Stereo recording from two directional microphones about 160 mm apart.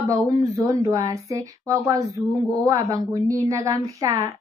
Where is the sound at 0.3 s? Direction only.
20° right (ahead or behind).